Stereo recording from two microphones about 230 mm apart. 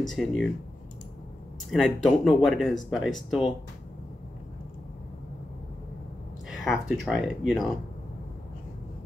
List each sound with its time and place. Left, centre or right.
0.1 s speech: centre
1.7 s speech: centre
6.5 s speech: centre